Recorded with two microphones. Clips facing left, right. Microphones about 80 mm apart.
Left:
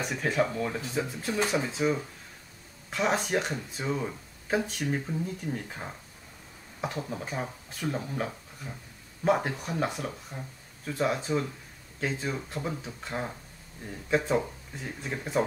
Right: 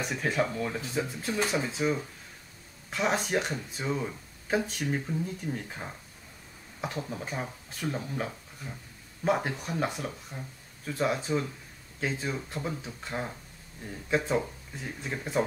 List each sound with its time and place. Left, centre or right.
0.0 s speech: centre